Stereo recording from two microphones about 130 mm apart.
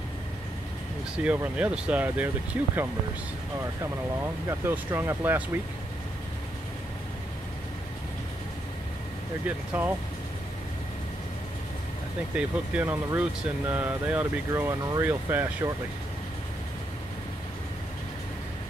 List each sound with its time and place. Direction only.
1.2 s speech: 10° right (ahead or behind)
4.5 s speech: 20° right (ahead or behind)
9.8 s speech: 10° right (ahead or behind)
12.4 s speech: 10° right (ahead or behind)